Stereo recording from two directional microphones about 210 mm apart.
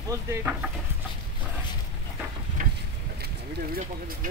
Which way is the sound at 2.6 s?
40° right (ahead or behind).